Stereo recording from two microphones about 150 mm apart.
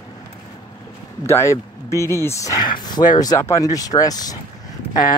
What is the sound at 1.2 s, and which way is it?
Speech, 20° left (ahead or behind).